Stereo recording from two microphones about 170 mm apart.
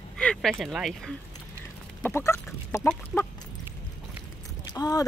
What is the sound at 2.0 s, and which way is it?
Chicken, 15° left (ahead or behind).